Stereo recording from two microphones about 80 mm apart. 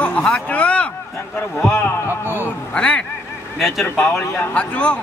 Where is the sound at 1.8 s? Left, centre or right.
Left.